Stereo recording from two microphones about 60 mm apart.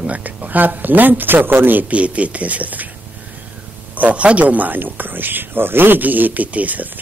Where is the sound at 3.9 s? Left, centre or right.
Right.